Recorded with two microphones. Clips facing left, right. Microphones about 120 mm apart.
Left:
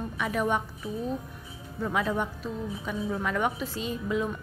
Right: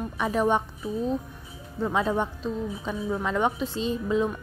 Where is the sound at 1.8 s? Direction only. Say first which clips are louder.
Right 3 dB; 25° right (ahead or behind).